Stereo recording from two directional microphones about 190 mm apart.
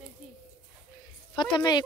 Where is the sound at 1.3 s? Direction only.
25° left (ahead or behind).